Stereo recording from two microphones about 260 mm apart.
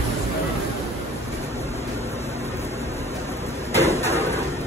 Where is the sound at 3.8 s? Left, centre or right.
Left.